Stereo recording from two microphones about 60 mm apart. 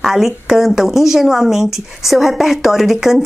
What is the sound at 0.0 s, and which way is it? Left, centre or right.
Speech, centre.